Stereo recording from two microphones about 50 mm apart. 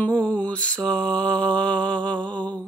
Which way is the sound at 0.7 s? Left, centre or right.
Centre.